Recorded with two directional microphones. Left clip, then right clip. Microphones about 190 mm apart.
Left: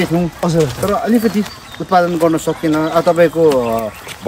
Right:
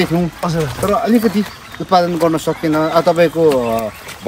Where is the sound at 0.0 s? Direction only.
Centre (ahead or behind).